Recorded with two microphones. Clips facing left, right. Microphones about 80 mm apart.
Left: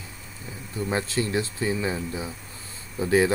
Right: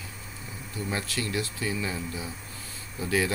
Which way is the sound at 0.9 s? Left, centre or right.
Left.